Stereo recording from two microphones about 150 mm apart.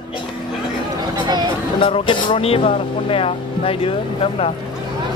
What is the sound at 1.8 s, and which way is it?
Speech, 35° left (ahead or behind).